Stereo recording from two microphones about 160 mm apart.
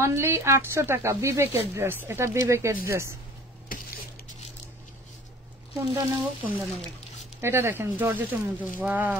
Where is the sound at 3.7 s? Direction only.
60° left (ahead or behind).